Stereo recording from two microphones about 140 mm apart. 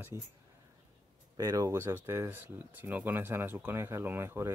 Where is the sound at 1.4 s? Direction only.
25° right (ahead or behind).